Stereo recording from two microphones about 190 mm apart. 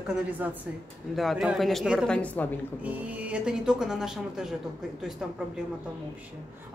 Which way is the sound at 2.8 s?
10° right (ahead or behind).